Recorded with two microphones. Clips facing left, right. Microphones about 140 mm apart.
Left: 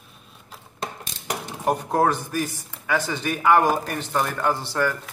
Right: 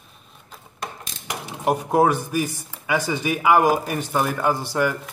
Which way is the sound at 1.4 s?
10° right (ahead or behind).